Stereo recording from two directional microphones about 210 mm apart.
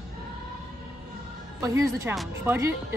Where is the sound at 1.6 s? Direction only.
15° right (ahead or behind).